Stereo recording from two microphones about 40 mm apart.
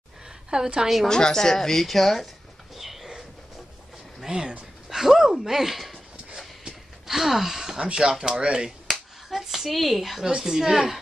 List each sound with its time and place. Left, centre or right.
0.5 s a woman's voice: centre
1.0 s a woman's voice: centre
2.7 s a sound: centre
4.2 s speech: centre
4.8 s a sound: centre
7.8 s speech: centre
10.2 s a woman's voice: centre